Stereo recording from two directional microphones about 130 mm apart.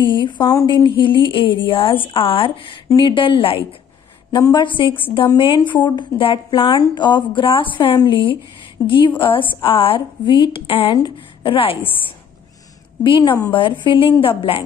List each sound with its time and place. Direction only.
0.0 s a woman's voice: 40° left (ahead or behind)
13.0 s a woman's voice: 40° left (ahead or behind)